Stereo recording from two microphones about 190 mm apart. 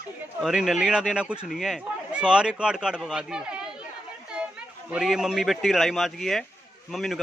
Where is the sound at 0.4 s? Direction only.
Centre (ahead or behind).